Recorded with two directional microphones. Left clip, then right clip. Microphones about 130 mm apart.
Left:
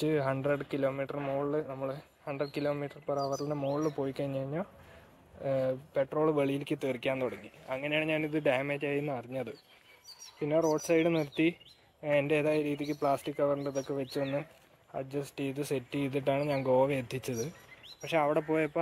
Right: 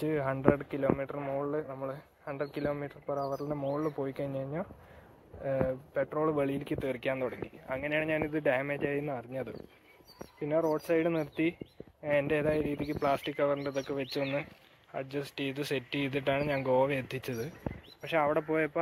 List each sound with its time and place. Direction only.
0.0 s speech: 25° left (ahead or behind)